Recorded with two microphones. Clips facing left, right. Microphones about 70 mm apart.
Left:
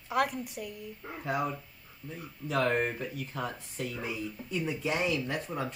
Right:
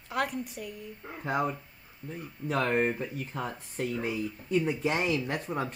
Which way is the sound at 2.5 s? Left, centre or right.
Right.